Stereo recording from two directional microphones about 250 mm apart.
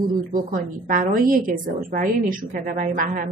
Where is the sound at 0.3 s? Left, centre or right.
Right.